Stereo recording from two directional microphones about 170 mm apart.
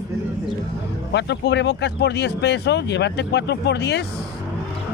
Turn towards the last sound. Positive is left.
turn(degrees=85)